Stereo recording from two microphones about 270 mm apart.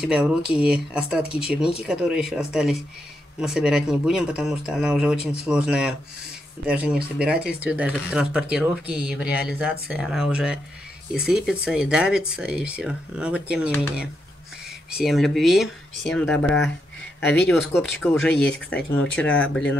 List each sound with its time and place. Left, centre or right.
0.0 s speech: centre
14.9 s speech: centre